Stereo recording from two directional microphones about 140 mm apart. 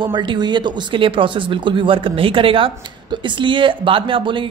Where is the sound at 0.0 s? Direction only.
35° right (ahead or behind).